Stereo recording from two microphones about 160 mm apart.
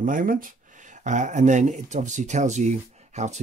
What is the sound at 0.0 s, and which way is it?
Speech, 60° right (ahead or behind).